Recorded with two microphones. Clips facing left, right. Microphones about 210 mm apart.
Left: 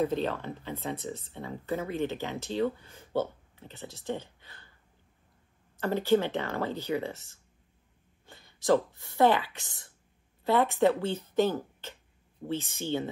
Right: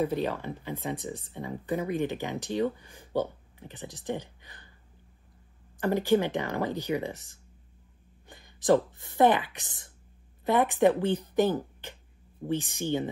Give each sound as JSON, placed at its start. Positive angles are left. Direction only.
{"t": 0.0, "sound": "speech", "side_deg": -10}
{"t": 5.8, "sound": "a woman's voice", "side_deg": -15}